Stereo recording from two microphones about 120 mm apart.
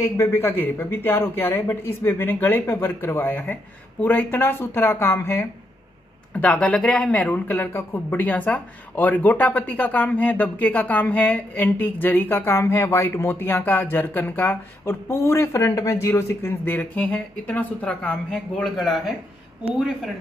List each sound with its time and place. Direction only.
0.0 s speech: 20° left (ahead or behind)
6.3 s speech: 10° left (ahead or behind)